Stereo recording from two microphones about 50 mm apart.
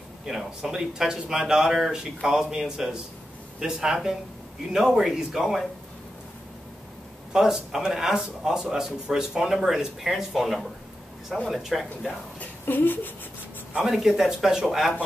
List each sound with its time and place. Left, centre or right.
0.2 s speech: centre
7.3 s speech: centre
12.4 s a woman's voice: left
13.8 s speech: centre